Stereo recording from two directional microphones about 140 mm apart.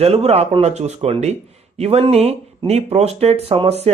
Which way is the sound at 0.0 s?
45° right (ahead or behind).